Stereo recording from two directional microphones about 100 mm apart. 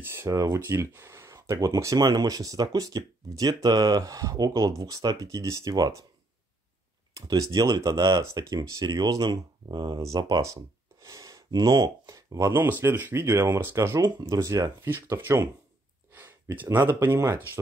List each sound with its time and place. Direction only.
0.0 s speech: 25° right (ahead or behind)
7.2 s speech: 35° right (ahead or behind)
16.1 s a sound: 20° right (ahead or behind)
16.7 s speech: 20° right (ahead or behind)